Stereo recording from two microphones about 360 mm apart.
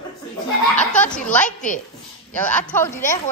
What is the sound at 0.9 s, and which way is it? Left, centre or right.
A woman's voice, centre.